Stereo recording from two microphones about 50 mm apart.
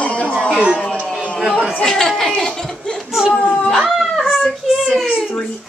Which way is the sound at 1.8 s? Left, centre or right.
Centre.